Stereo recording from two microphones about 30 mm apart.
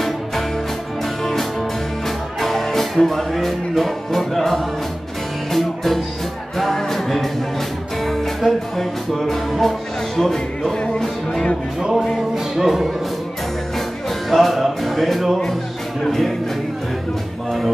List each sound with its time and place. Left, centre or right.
2.4 s speech: centre
5.5 s music: centre
6.6 s speech: centre
8.4 s speech: centre
11.9 s music: centre
12.5 s speech: centre
14.3 s music: centre
16.1 s speech: centre